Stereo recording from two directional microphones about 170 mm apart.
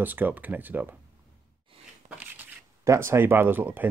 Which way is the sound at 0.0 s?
10° right (ahead or behind).